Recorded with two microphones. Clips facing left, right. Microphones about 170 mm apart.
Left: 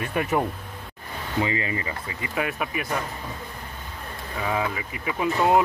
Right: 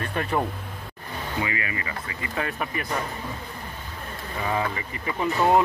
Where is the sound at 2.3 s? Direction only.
10° left (ahead or behind).